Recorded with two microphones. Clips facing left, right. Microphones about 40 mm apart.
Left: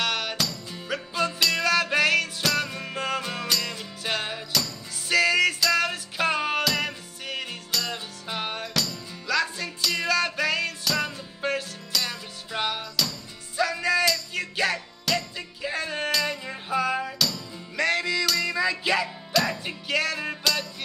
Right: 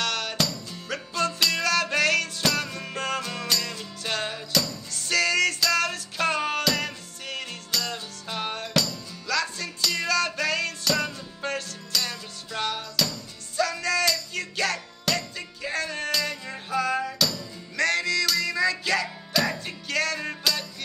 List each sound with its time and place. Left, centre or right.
0.0 s music: centre
19.3 s music: centre
19.6 s music: centre